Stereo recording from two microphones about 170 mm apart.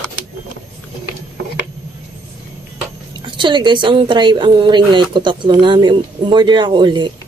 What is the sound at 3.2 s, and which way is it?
A woman's voice, 30° right (ahead or behind).